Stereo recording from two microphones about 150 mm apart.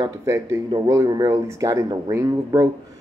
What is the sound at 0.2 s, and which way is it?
Speech, 20° right (ahead or behind).